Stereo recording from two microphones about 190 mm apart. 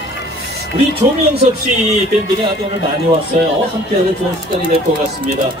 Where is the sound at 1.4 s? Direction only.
35° right (ahead or behind).